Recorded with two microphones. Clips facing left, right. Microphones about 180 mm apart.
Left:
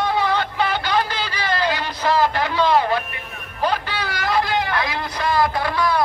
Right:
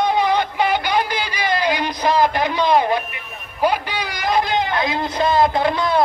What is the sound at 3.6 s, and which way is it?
A man's voice, 15° right (ahead or behind).